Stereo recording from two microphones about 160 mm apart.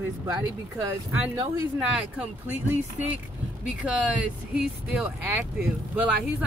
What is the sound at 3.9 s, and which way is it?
Speech, 5° right (ahead or behind).